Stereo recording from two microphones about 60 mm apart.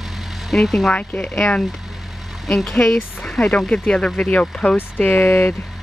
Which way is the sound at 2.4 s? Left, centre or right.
Centre.